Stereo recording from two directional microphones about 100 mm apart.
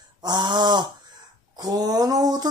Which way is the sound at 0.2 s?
45° right (ahead or behind).